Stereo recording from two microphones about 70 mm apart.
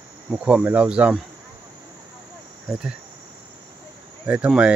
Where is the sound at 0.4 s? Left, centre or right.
Centre.